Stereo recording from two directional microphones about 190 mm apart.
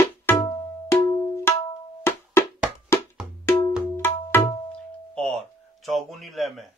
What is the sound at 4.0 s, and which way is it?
Music, 10° left (ahead or behind).